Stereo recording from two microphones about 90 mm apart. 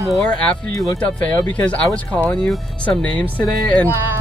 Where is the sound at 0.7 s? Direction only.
40° left (ahead or behind).